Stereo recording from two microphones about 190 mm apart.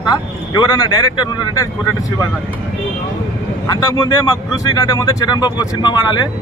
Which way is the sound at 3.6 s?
20° left (ahead or behind).